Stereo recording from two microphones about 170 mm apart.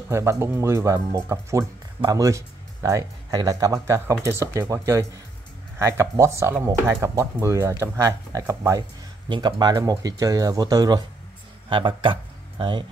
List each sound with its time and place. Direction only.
0.1 s speech: 15° right (ahead or behind)